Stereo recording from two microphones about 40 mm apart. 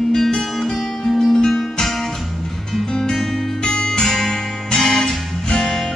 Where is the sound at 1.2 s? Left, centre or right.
Centre.